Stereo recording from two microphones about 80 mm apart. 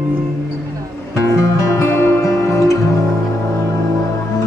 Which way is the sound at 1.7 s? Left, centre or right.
Left.